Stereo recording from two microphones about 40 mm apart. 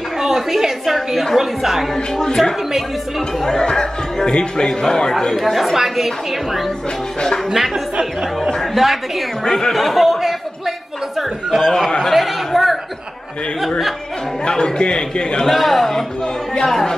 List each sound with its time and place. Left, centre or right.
0.2 s a sound: centre
3.4 s speech: centre
5.3 s speech: centre
7.2 s speech: centre
7.5 s speech: centre
9.4 s speech: centre
11.6 s speech: centre
12.0 s chatter: centre
14.5 s a man's voice: centre
15.4 s speech: centre